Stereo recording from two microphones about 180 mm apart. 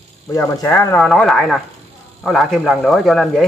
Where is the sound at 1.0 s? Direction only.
Centre (ahead or behind).